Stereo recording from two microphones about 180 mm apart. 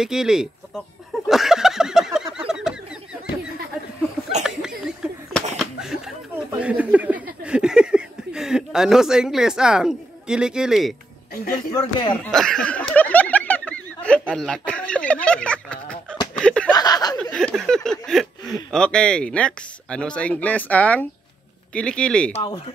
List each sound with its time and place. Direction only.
0.0 s speech: 5° right (ahead or behind)
1.3 s a sound: centre (ahead or behind)
4.4 s a sound: 5° right (ahead or behind)
6.6 s speech: 10° right (ahead or behind)
11.5 s speech: 25° left (ahead or behind)
12.2 s speech: 5° left (ahead or behind)
16.3 s snicker: 5° left (ahead or behind)
16.7 s speech: 20° left (ahead or behind)
17.2 s speech: 5° left (ahead or behind)
22.3 s speech: 30° left (ahead or behind)